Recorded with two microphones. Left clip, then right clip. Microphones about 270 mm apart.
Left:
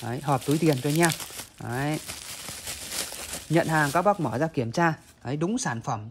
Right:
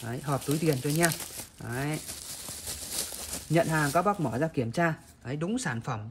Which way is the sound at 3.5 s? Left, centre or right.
Centre.